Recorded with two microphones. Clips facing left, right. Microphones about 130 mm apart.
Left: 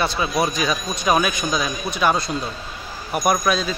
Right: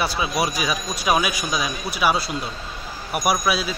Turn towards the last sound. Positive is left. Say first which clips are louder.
# left 2 dB
turn(degrees=-10)  # may be behind; listen again after turning